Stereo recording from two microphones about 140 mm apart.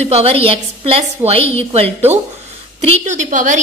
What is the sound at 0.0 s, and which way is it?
A woman's voice, 50° right (ahead or behind).